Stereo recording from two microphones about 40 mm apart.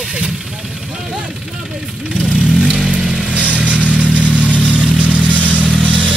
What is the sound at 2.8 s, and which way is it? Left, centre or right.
Vehicle, right.